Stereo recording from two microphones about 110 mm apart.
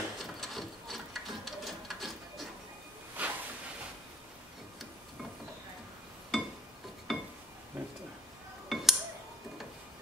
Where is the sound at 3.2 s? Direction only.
15° right (ahead or behind).